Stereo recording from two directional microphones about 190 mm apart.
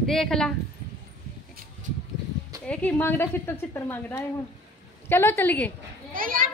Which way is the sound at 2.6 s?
5° left (ahead or behind).